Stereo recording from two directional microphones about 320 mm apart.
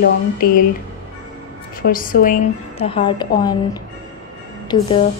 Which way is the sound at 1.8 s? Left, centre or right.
Left.